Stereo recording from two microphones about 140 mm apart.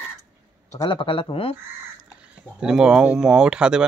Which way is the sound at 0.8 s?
40° left (ahead or behind).